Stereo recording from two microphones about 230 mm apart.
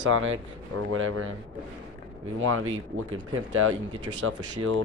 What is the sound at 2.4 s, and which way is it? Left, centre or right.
Speech, right.